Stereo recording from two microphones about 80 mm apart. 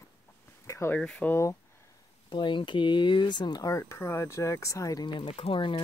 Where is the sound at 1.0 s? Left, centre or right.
Centre.